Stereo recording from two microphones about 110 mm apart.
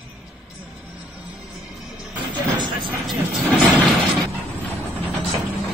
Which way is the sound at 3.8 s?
Centre (ahead or behind).